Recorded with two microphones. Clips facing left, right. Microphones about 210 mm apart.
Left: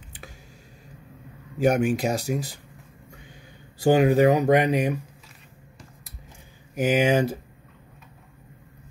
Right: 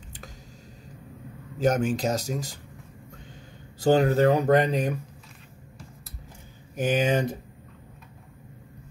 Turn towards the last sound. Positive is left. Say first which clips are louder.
# left 3 dB
turn(degrees=10)  # may be behind; listen again after turning